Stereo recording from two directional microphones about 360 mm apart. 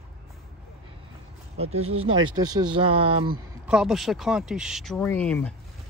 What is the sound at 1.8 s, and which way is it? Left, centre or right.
Speech, right.